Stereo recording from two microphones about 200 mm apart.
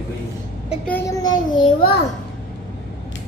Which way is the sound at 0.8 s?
10° left (ahead or behind).